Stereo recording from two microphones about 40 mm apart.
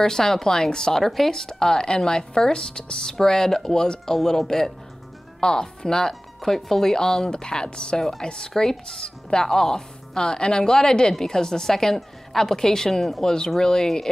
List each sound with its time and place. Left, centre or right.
0.0 s speech: centre
1.0 s speech: centre